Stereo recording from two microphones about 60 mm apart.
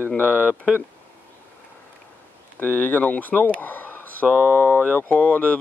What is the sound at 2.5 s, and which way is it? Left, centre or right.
Speech, left.